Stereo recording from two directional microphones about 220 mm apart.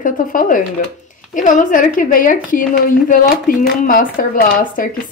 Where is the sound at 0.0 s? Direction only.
40° left (ahead or behind).